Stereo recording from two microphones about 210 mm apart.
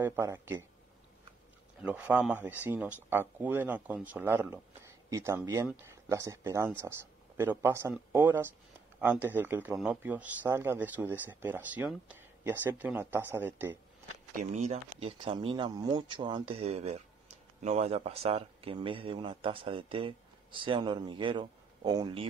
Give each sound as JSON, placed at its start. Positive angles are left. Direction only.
{"t": 0.0, "sound": "speech", "side_deg": -10}
{"t": 1.8, "sound": "speech", "side_deg": -5}
{"t": 14.3, "sound": "speech", "side_deg": -35}